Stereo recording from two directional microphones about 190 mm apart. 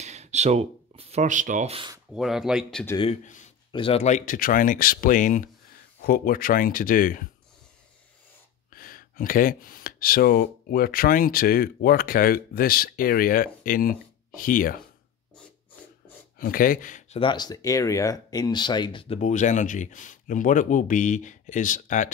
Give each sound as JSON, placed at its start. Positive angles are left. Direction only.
{"t": 0.0, "sound": "a sound", "side_deg": -35}
{"t": 2.1, "sound": "speech", "side_deg": 0}
{"t": 3.7, "sound": "speech", "side_deg": 30}
{"t": 8.7, "sound": "speech", "side_deg": 50}
{"t": 16.3, "sound": "speech", "side_deg": 50}
{"t": 17.2, "sound": "speech", "side_deg": 25}